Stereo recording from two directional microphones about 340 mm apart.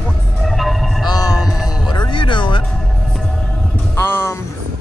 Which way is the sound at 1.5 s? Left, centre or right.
Centre.